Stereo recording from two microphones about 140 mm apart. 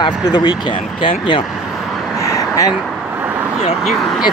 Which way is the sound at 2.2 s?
25° left (ahead or behind).